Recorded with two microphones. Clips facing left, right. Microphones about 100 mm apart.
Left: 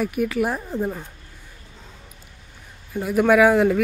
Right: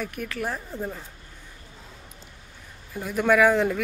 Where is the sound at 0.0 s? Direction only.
10° left (ahead or behind).